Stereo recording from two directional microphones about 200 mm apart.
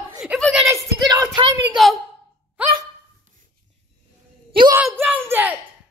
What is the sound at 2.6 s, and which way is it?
Dog, 5° right (ahead or behind).